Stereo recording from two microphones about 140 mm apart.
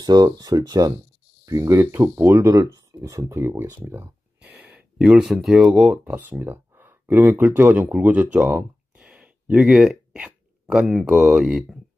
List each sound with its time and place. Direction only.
0.0 s speech: 30° right (ahead or behind)
3.8 s a sound: 15° right (ahead or behind)
4.6 s speech: 5° right (ahead or behind)